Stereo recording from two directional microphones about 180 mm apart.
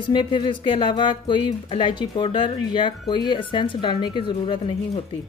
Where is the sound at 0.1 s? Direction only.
25° left (ahead or behind).